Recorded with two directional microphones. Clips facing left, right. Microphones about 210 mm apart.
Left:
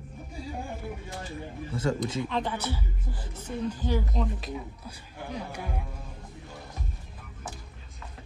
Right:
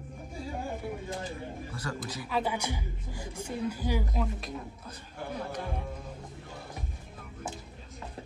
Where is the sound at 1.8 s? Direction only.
20° left (ahead or behind).